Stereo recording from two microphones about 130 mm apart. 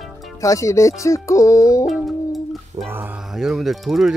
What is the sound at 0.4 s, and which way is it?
Speech, 25° left (ahead or behind).